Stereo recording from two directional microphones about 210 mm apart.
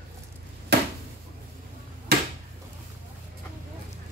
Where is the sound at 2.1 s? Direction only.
50° right (ahead or behind).